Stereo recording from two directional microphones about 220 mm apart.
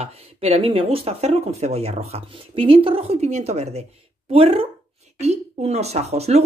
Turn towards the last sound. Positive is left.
turn(degrees=-30)  # may be behind; listen again after turning